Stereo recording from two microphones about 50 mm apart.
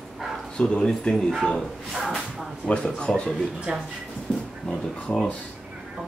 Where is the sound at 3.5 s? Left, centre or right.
Centre.